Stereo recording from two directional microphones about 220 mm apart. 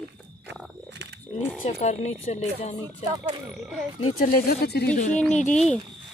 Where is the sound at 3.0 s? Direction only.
20° right (ahead or behind).